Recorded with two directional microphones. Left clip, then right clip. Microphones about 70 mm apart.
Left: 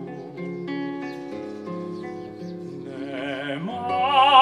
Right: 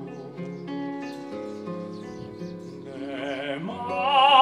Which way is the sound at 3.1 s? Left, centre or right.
Left.